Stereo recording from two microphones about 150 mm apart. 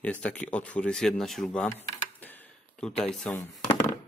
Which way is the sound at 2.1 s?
10° left (ahead or behind).